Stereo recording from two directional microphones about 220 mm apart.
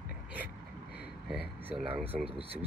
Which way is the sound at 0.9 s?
45° left (ahead or behind).